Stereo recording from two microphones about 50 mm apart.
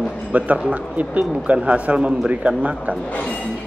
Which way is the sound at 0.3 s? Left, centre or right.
Right.